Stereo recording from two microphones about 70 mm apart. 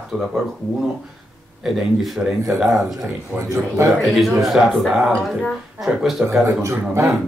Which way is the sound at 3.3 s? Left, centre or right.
Centre.